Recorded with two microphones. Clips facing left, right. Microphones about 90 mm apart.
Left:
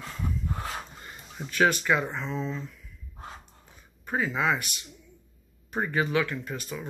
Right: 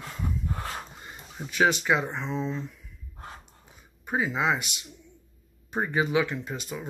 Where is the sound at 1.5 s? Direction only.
20° right (ahead or behind).